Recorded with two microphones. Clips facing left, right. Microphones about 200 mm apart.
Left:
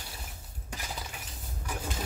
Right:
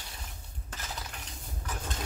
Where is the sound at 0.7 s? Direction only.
15° left (ahead or behind).